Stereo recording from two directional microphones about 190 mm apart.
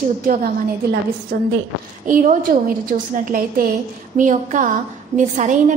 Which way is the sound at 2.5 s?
50° right (ahead or behind).